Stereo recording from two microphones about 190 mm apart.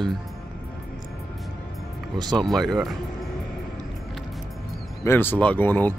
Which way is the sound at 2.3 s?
Centre (ahead or behind).